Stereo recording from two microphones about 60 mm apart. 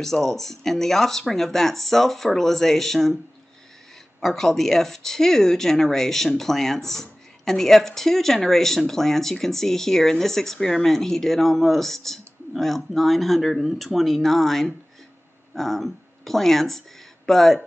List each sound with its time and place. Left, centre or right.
0.0 s speech: centre
4.2 s speech: centre